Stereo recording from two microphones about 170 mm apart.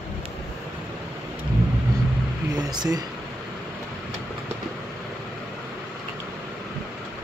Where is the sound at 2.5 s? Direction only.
25° right (ahead or behind).